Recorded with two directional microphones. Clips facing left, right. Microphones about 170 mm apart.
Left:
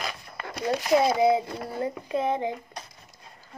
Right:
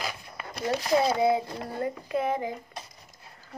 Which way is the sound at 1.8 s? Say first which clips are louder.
Left 1 dB; 25° left (ahead or behind).